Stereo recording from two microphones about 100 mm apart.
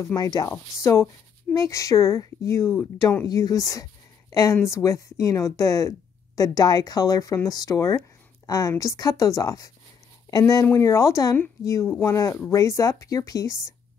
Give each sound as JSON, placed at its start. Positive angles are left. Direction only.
{"t": 0.0, "sound": "a woman's voice", "side_deg": 35}